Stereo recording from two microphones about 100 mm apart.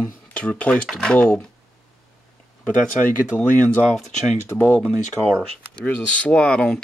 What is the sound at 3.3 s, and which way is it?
Speech, 15° left (ahead or behind).